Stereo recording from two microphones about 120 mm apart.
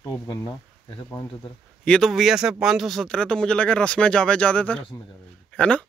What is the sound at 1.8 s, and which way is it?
Speech, 5° left (ahead or behind).